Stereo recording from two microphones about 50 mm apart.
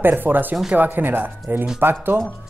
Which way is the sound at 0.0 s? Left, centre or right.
Right.